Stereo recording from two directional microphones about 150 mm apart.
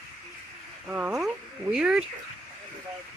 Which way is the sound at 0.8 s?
10° right (ahead or behind).